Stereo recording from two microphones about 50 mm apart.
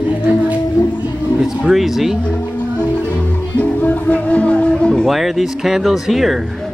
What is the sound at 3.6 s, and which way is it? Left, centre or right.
Music, left.